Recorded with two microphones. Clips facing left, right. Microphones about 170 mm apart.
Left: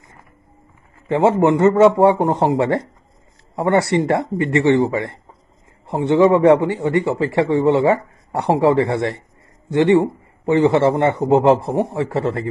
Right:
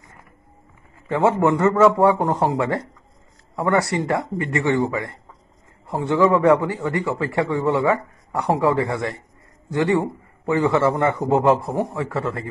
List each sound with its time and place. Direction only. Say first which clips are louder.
1.0 s a man's voice: left 3 dB; 25° left (ahead or behind)